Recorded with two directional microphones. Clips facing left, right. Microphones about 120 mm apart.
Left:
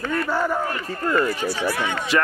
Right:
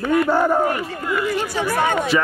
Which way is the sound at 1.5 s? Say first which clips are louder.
Right 4 dB; 50° right (ahead or behind).